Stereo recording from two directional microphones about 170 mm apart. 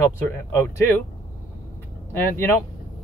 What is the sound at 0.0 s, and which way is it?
Speech, 15° left (ahead or behind).